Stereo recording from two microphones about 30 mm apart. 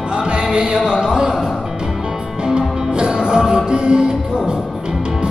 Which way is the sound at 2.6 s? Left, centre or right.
Right.